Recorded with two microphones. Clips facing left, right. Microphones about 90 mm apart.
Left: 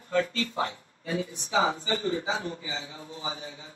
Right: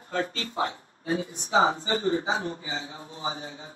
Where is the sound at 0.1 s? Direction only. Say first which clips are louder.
Left 3 dB; 40° right (ahead or behind).